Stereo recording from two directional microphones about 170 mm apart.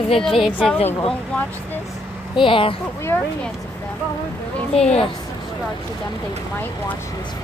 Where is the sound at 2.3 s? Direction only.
30° left (ahead or behind).